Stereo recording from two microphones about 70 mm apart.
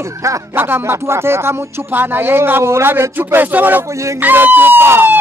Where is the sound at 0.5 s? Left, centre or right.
Right.